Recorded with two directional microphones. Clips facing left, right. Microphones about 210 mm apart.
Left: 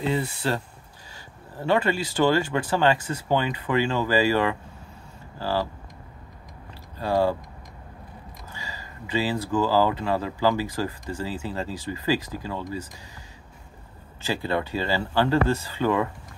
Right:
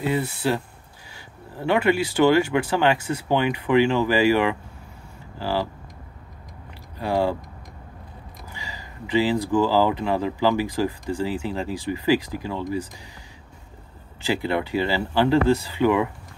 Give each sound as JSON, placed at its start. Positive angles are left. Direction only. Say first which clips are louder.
{"t": 0.0, "sound": "speech", "louder": "right 2 dB", "side_deg": -10}
{"t": 1.7, "sound": "speech", "louder": "right 3 dB", "side_deg": -10}
{"t": 7.0, "sound": "speech", "louder": "even", "side_deg": -15}
{"t": 8.5, "sound": "speech", "louder": "right 2 dB", "side_deg": -15}
{"t": 14.2, "sound": "speech", "louder": "right 3 dB", "side_deg": -15}